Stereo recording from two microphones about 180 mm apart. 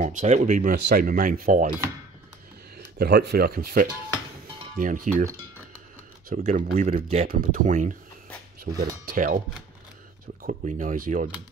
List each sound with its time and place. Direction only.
0.0 s speech: 40° right (ahead or behind)
2.8 s speech: 65° right (ahead or behind); by 5.2 s 50° right (ahead or behind)
6.2 s speech: 45° right (ahead or behind)
10.4 s speech: 45° right (ahead or behind)